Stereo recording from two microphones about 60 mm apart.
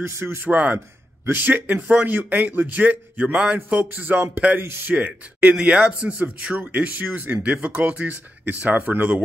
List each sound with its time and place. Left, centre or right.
0.0 s speech: right
1.3 s a man's voice: right
4.6 s speech: right
4.9 s a man's voice: right